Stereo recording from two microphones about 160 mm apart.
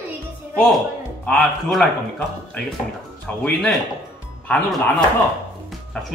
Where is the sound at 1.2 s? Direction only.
5° left (ahead or behind).